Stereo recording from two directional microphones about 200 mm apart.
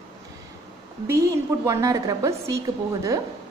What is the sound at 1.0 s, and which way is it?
A woman's voice, 15° right (ahead or behind).